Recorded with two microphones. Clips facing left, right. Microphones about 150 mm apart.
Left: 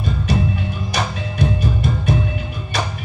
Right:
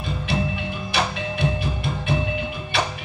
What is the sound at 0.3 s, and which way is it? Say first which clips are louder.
Music: left 3 dB; 40° left (ahead or behind).